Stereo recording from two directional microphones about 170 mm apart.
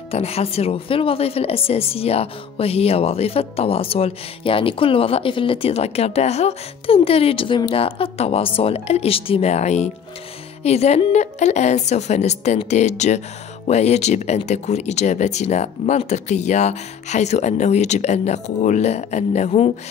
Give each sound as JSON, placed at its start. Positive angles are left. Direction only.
{"t": 0.1, "sound": "speech", "side_deg": 35}